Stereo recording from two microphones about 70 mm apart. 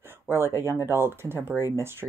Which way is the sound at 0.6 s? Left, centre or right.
Right.